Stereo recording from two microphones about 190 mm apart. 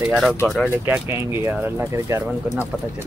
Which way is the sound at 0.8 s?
10° right (ahead or behind).